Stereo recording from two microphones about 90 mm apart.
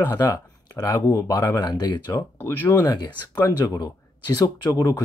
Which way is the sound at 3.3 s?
45° left (ahead or behind).